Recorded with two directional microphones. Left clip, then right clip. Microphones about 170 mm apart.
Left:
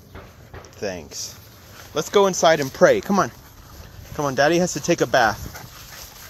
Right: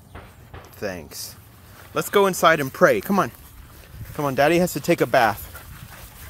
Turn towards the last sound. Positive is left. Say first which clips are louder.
# even
turn(degrees=-20)  # may be behind; listen again after turning